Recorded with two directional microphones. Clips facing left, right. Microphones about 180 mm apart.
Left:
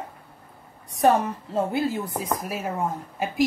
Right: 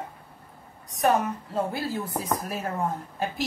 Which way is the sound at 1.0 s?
30° left (ahead or behind).